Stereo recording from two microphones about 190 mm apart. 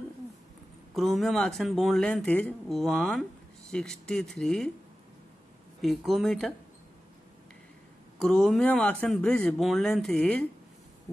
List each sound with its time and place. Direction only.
0.9 s speech: centre (ahead or behind)
5.8 s speech: centre (ahead or behind)
8.2 s speech: 5° left (ahead or behind)